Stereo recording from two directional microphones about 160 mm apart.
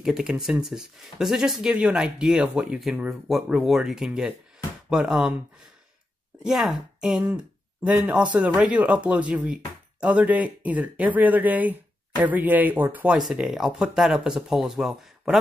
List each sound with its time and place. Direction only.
0.0 s speech: 5° right (ahead or behind)
6.4 s speech: centre (ahead or behind)